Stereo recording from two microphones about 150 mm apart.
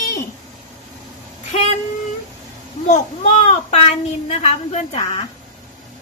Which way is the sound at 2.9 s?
50° left (ahead or behind).